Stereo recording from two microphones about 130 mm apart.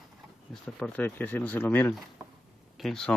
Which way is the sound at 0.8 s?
10° left (ahead or behind).